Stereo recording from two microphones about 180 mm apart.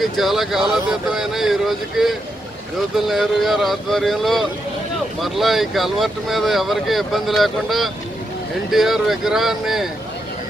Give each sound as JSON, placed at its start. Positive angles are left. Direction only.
{"t": 0.0, "sound": "speech", "side_deg": 0}